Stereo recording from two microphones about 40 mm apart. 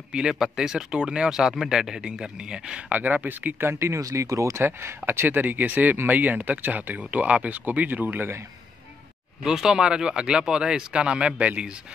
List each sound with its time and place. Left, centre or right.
0.1 s speech: centre
2.9 s speech: right
4.6 s speech: right
5.3 s speech: right
7.1 s speech: right
9.4 s speech: centre; by 11.6 s right